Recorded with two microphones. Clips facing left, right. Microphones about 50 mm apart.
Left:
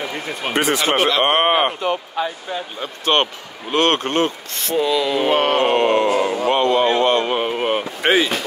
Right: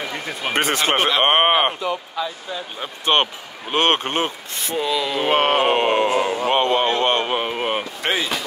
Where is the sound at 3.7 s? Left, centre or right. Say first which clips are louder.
Left 1 dB; right.